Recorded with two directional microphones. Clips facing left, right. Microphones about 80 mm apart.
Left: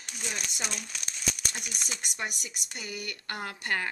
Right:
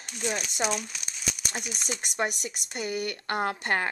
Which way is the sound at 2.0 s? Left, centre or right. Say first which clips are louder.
Right 9 dB; right.